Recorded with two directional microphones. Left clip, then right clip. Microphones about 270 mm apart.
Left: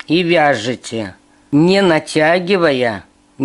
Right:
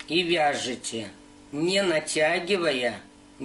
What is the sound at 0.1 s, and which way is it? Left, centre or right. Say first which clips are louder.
Speech: left 11 dB; centre.